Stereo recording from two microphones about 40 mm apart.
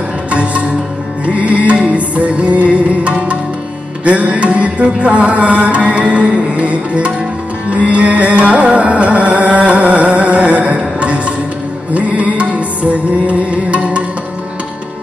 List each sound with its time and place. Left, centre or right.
0.3 s music: right